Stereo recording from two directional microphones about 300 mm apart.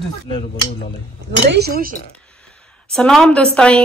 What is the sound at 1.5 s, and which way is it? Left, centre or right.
Speech, right.